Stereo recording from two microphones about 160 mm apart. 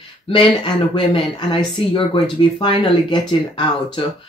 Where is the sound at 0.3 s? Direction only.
30° left (ahead or behind).